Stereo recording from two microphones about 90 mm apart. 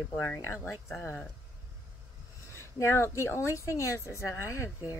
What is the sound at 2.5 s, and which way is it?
A woman's voice, 30° left (ahead or behind).